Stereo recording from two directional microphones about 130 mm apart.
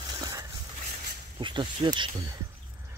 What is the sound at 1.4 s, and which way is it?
Speech, 40° right (ahead or behind).